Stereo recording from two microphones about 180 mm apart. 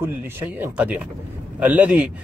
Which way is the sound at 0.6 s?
10° right (ahead or behind).